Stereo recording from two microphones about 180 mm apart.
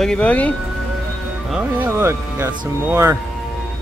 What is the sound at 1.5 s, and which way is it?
Speech, 10° right (ahead or behind).